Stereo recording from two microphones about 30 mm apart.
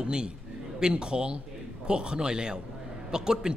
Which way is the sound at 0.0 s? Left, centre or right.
Right.